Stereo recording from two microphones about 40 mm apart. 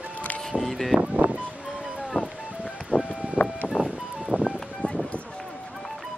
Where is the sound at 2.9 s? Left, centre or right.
Left.